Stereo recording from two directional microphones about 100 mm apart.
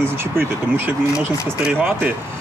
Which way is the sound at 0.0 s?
20° right (ahead or behind).